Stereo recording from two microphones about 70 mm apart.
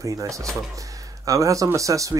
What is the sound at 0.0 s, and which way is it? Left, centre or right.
Speech, right.